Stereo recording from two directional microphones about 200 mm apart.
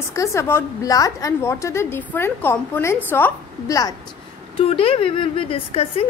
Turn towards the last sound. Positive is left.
turn(degrees=30)  # may be behind; listen again after turning